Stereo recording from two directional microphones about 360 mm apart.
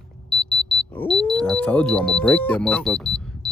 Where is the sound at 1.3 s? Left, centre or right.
Centre.